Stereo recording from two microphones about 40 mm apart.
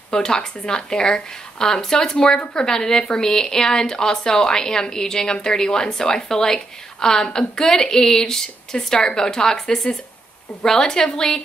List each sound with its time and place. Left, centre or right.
0.1 s speech: centre